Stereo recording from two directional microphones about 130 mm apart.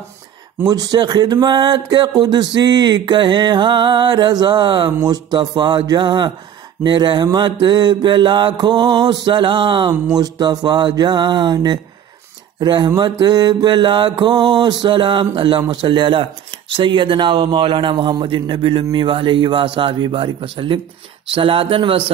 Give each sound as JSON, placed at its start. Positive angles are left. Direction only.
{"t": 0.7, "sound": "speech", "side_deg": -30}